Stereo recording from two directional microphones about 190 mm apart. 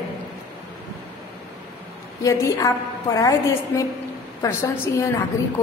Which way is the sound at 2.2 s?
15° left (ahead or behind).